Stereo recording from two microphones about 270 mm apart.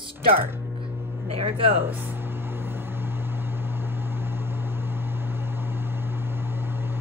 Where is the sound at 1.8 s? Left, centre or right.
Centre.